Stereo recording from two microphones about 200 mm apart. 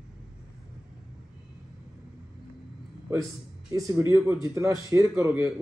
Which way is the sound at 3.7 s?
15° right (ahead or behind).